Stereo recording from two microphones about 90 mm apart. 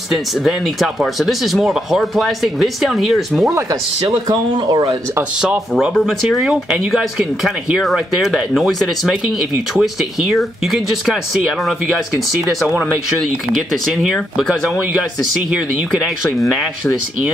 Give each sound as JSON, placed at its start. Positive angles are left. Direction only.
{"t": 0.1, "sound": "speech", "side_deg": -5}
{"t": 4.3, "sound": "speech", "side_deg": -50}
{"t": 5.4, "sound": "speech", "side_deg": -5}
{"t": 13.9, "sound": "speech", "side_deg": -5}